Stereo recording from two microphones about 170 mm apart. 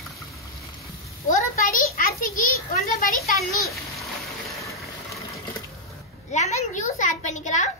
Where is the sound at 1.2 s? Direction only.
55° left (ahead or behind).